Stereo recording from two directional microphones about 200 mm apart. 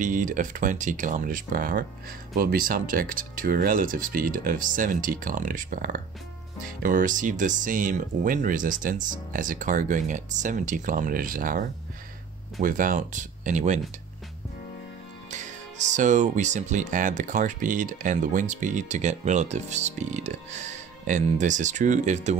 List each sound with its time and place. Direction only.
0.0 s speech: 40° right (ahead or behind)
15.3 s speech: 35° right (ahead or behind)